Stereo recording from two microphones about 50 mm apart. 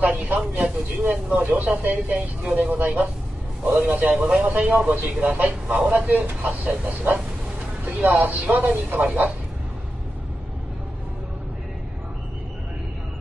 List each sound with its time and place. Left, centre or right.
0.0 s speech: right